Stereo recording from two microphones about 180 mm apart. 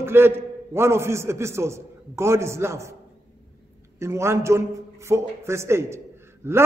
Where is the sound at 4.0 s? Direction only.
15° right (ahead or behind).